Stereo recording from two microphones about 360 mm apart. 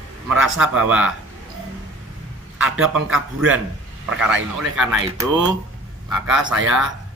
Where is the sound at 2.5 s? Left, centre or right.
Centre.